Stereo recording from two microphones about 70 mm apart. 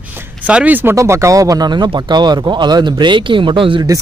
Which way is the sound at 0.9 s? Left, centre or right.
Right.